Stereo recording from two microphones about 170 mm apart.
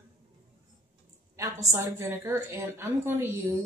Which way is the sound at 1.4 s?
15° right (ahead or behind).